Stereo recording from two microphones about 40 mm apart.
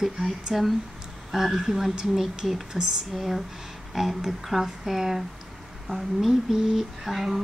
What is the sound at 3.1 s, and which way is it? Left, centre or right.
A woman's voice, centre.